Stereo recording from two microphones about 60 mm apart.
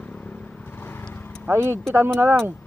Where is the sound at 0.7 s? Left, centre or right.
Left.